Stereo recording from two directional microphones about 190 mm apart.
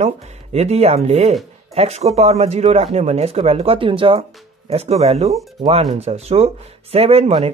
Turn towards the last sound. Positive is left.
turn(degrees=-30)  # may be behind; listen again after turning